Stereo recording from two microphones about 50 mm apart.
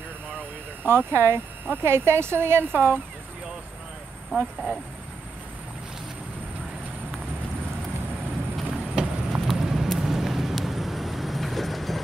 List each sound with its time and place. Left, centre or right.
0.8 s speech: right
8.7 s a sound: centre
9.5 s horse: centre
9.9 s vehicle: centre